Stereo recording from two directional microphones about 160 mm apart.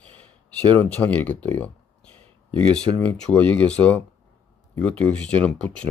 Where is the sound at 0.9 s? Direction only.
10° left (ahead or behind).